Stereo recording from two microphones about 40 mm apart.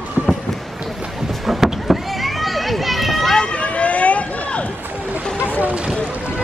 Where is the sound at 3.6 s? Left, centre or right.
Left.